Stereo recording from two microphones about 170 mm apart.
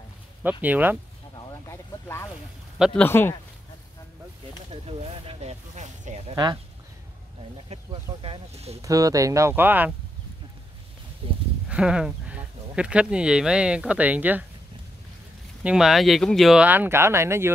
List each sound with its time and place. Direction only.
0.4 s speech: 10° right (ahead or behind)
1.7 s a sound: 15° left (ahead or behind)
2.8 s speech: 10° left (ahead or behind)
4.8 s a sound: 35° right (ahead or behind)
6.3 s speech: 25° right (ahead or behind)
7.7 s speech: 35° right (ahead or behind)
8.8 s speech: 20° right (ahead or behind)
11.2 s speech: 30° right (ahead or behind)
11.7 s speech: 5° right (ahead or behind)
15.6 s speech: 5° right (ahead or behind)